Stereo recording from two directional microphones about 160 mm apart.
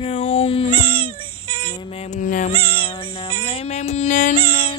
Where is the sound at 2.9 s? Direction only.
35° left (ahead or behind); by 4.3 s 50° left (ahead or behind).